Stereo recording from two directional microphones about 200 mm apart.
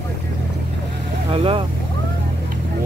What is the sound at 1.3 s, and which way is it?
Speech, 25° right (ahead or behind).